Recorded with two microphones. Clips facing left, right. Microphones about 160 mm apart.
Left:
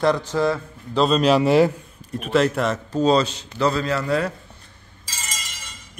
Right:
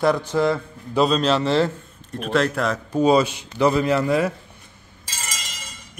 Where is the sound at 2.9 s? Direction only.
10° right (ahead or behind).